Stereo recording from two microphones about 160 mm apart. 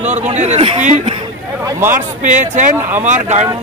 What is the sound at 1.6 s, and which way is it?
Speech, 15° right (ahead or behind).